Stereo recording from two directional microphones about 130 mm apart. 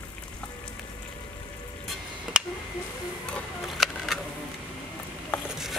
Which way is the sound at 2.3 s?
5° right (ahead or behind).